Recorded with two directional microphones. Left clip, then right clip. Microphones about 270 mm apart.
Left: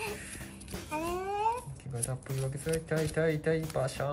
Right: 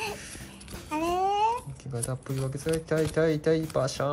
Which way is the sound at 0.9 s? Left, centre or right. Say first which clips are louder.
Right 8 dB; right.